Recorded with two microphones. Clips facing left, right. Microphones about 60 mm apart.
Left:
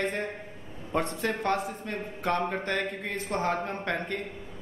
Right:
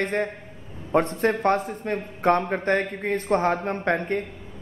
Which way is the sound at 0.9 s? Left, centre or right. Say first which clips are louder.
Right 8 dB; right.